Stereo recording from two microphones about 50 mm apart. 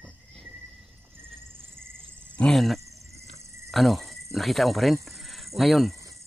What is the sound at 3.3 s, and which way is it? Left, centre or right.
Cricket, right.